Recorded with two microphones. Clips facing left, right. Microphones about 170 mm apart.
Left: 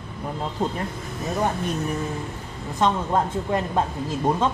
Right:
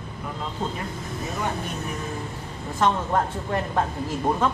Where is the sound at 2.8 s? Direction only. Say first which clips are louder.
Left 1 dB; 20° left (ahead or behind).